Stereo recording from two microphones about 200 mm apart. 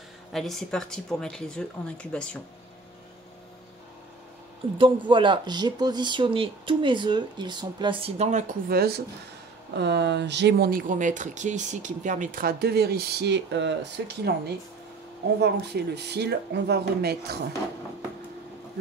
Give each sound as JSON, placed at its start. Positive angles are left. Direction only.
{"t": 0.3, "sound": "speech", "side_deg": 0}
{"t": 4.7, "sound": "speech", "side_deg": -25}
{"t": 8.7, "sound": "speech", "side_deg": -50}